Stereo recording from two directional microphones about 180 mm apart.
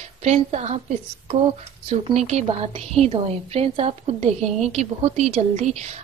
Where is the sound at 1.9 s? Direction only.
35° right (ahead or behind).